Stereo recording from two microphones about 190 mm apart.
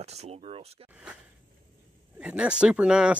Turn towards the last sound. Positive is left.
turn(degrees=-5)  # may be behind; listen again after turning